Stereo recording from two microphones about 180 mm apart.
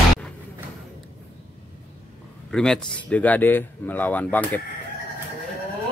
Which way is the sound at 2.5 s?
5° left (ahead or behind).